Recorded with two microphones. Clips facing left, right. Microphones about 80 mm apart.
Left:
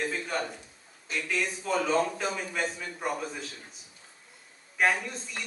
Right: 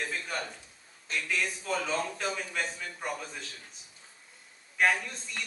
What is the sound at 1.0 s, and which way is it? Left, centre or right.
A man's voice, centre.